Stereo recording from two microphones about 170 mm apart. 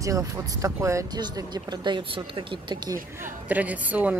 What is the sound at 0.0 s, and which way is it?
Speech, 20° right (ahead or behind).